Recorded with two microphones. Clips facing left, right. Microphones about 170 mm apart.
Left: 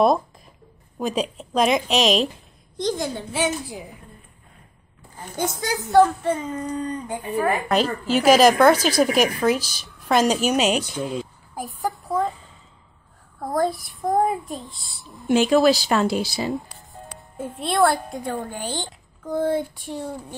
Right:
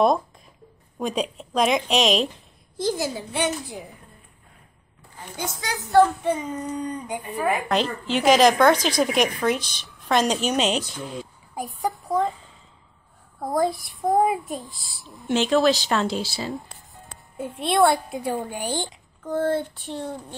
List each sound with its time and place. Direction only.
0.9 s a woman's voice: centre (ahead or behind)
5.1 s a child's voice: 45° left (ahead or behind)
6.2 s a woman's voice: 10° right (ahead or behind)
7.6 s a woman's voice: 5° left (ahead or behind)
13.4 s a woman's voice: centre (ahead or behind); by 16.5 s 15° left (ahead or behind)
17.4 s a woman's voice: centre (ahead or behind)
19.2 s speech: 10° left (ahead or behind)